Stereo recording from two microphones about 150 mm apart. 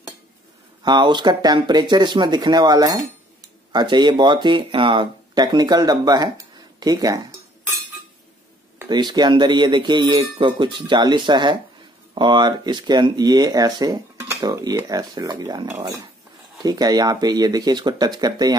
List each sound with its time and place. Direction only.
0.8 s speech: 30° right (ahead or behind)
8.8 s speech: 30° right (ahead or behind)